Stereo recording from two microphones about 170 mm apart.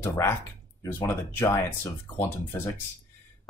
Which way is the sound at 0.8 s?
10° left (ahead or behind).